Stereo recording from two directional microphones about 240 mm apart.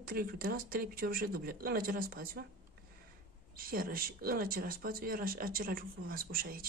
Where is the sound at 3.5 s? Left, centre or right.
Right.